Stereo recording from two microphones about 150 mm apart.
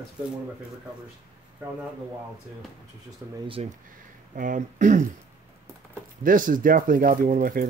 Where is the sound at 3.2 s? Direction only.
15° right (ahead or behind).